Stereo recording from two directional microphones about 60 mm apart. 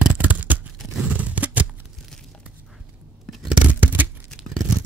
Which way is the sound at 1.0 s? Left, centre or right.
Right.